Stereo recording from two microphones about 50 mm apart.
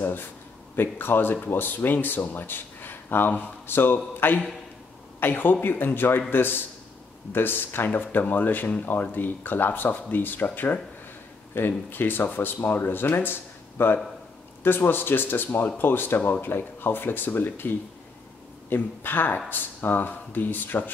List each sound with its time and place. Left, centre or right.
0.7 s speech: left